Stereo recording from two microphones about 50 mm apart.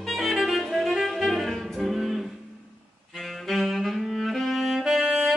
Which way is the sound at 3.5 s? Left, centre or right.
Centre.